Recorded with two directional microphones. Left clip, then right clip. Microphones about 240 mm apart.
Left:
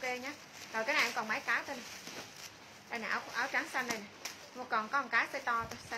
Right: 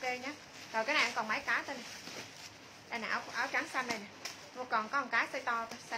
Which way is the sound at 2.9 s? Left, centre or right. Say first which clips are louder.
Even; centre.